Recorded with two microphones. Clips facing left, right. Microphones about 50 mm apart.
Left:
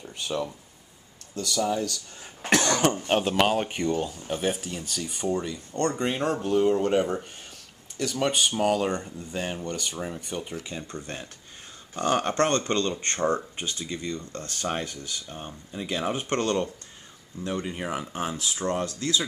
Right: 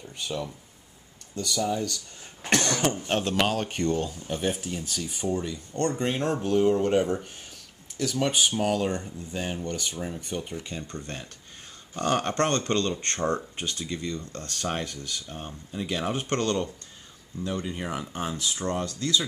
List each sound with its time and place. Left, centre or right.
0.0 s speech: centre
1.3 s speech: centre
2.8 s speech: centre
12.4 s speech: left
14.7 s speech: centre
18.9 s speech: left